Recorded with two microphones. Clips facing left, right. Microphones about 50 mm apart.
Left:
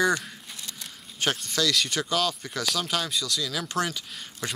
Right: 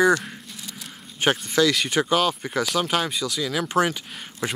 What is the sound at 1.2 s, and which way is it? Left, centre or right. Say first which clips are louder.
Speech: right 7 dB; centre.